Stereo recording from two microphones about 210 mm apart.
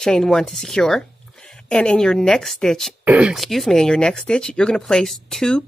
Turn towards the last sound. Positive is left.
turn(degrees=0)  # may be behind; listen again after turning